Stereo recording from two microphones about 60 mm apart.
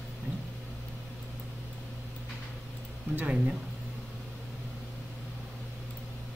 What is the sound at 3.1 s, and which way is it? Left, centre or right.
Speech, right.